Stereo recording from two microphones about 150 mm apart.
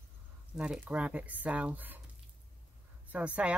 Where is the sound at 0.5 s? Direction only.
5° right (ahead or behind).